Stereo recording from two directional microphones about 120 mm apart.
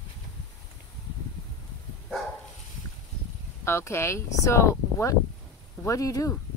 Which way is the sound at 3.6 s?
20° left (ahead or behind).